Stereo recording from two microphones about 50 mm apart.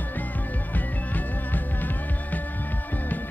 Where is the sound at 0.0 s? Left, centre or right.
Left.